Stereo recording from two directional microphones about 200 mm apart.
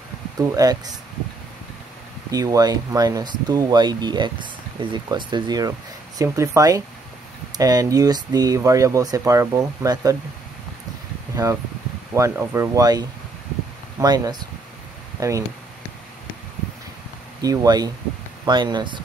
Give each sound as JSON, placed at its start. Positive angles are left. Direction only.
{"t": 0.4, "sound": "speech", "side_deg": -20}
{"t": 2.3, "sound": "speech", "side_deg": -20}
{"t": 12.1, "sound": "speech", "side_deg": -15}
{"t": 17.4, "sound": "speech", "side_deg": -20}